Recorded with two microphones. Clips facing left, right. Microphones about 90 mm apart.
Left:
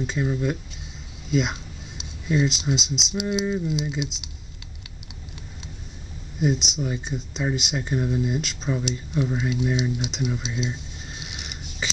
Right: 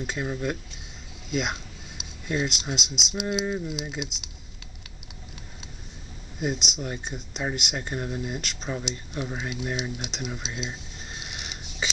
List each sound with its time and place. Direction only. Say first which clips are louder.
0.0 s speech: left 4 dB; 5° right (ahead or behind)
3.4 s speech: left 4 dB; 10° right (ahead or behind)
6.4 s speech: left 5 dB; centre (ahead or behind)
11.3 s a sound: even; centre (ahead or behind)